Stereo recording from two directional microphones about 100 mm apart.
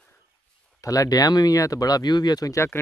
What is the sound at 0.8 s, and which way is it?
Speech, 35° left (ahead or behind).